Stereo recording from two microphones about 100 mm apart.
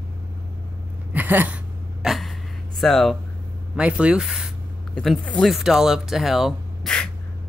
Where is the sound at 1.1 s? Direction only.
20° right (ahead or behind).